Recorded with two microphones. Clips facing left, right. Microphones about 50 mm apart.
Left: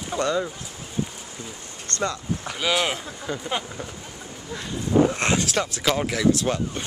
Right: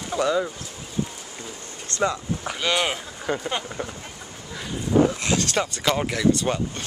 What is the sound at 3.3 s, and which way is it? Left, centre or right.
Speech, right.